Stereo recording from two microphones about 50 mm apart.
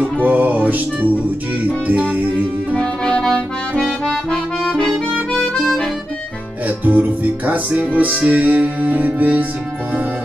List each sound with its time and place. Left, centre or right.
0.0 s music: right
1.9 s music: right
2.7 s music: centre
5.1 s harmonica: centre
6.8 s music: right